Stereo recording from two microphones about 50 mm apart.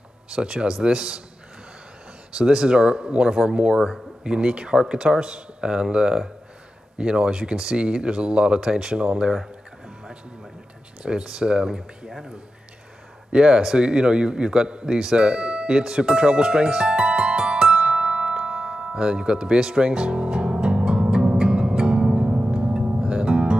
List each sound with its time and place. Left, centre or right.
0.3 s a man's voice: centre
2.3 s speech: centre
11.1 s a man's voice: centre
18.4 s music: centre